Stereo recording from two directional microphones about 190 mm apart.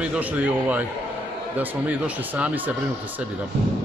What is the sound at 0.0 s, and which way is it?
Speech, 5° right (ahead or behind).